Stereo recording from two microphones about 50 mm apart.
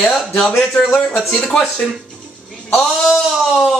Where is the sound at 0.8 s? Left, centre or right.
Left.